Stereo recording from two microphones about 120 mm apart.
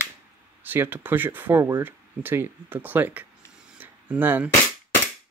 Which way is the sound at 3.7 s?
15° right (ahead or behind).